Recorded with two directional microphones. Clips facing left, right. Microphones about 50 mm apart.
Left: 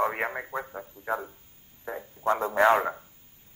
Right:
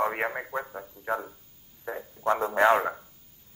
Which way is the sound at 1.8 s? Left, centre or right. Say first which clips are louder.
Even; centre.